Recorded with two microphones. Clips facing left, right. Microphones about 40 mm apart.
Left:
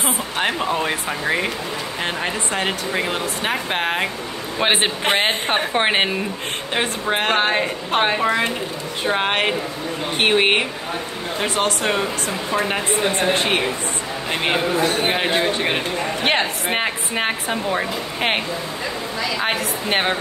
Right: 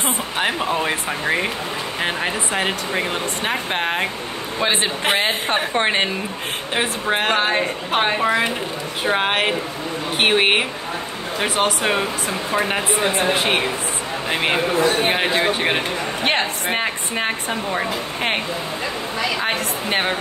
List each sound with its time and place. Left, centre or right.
0.0 s speech: centre
4.6 s a man's voice: left
5.0 s a woman's voice: centre
6.7 s speech: centre
10.1 s speech: centre
16.3 s speech: centre
19.4 s a woman's voice: centre